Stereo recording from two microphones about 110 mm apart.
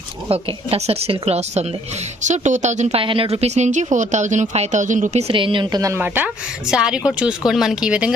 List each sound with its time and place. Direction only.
0.3 s a woman's voice: 65° right (ahead or behind)
2.2 s speech: 90° right
3.0 s speech: 55° right (ahead or behind); by 5.2 s 90° right
5.3 s a woman's voice: 50° right (ahead or behind)
5.9 s speech: 15° right (ahead or behind)